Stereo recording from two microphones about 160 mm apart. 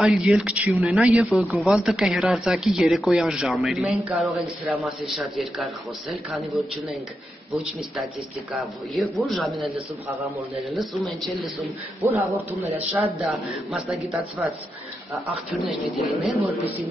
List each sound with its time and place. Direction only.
0.0 s speech: 5° right (ahead or behind)
10.7 s speech: centre (ahead or behind)
12.0 s a man's voice: 20° right (ahead or behind)
13.7 s speech: centre (ahead or behind)
15.5 s speech: centre (ahead or behind)